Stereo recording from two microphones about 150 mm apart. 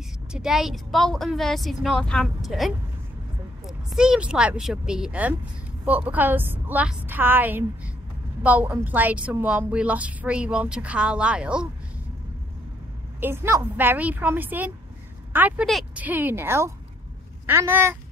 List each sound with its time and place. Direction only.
0.3 s a woman's voice: 5° right (ahead or behind)
13.2 s a woman's voice: 15° right (ahead or behind)
15.6 s speech: centre (ahead or behind)
16.0 s a woman's voice: 10° right (ahead or behind)